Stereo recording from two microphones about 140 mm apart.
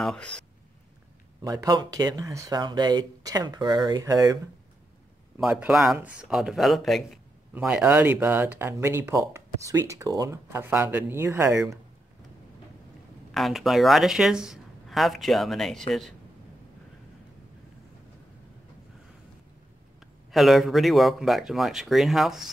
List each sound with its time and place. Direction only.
0.0 s speech: 5° left (ahead or behind)
1.4 s speech: 25° right (ahead or behind)
5.4 s a woman's voice: 5° right (ahead or behind); by 11.6 s 20° right (ahead or behind)
13.3 s a woman's voice: centre (ahead or behind)
20.2 s a woman's voice: centre (ahead or behind)